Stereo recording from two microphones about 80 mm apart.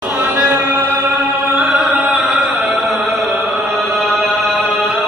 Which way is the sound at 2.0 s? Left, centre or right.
Centre.